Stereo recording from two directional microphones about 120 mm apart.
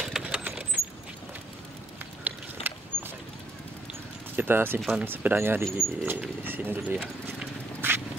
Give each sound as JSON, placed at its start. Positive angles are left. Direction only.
{"t": 0.0, "sound": "vehicle", "side_deg": -5}
{"t": 0.4, "sound": "vehicle", "side_deg": -15}
{"t": 2.2, "sound": "a sound", "side_deg": -15}
{"t": 4.4, "sound": "speech", "side_deg": -15}
{"t": 4.7, "sound": "speech", "side_deg": 0}
{"t": 5.0, "sound": "speech", "side_deg": -15}
{"t": 7.8, "sound": "duck", "side_deg": -20}